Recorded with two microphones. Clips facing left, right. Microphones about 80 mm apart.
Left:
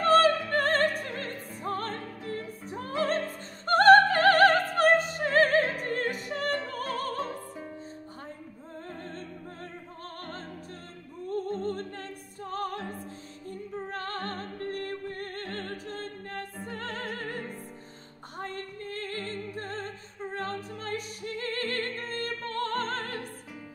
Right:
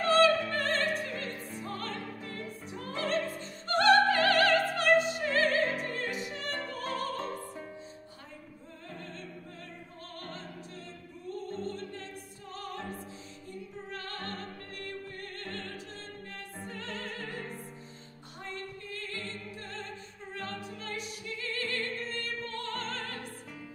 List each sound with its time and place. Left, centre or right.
0.0 s opera: left
2.7 s music: left
3.6 s opera: left
5.8 s music: left
6.7 s opera: left
7.2 s music: centre
11.2 s music: left
18.4 s music: left